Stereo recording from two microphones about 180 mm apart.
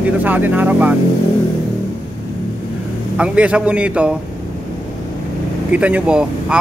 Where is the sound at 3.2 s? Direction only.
5° right (ahead or behind).